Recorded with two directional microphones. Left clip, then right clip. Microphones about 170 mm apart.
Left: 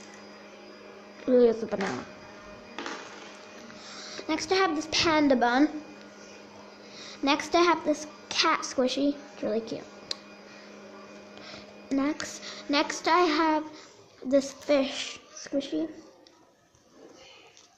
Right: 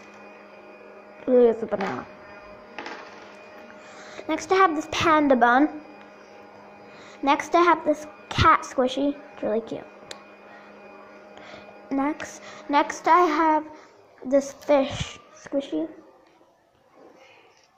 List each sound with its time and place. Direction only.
1.2 s speech: centre (ahead or behind)
4.2 s a woman's voice: 10° right (ahead or behind)
7.0 s a sound: centre (ahead or behind)
7.3 s a woman's voice: 10° right (ahead or behind)
11.3 s music: 5° right (ahead or behind)
12.9 s a woman's voice: 10° right (ahead or behind)